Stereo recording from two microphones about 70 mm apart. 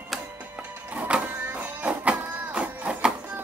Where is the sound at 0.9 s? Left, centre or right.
Right.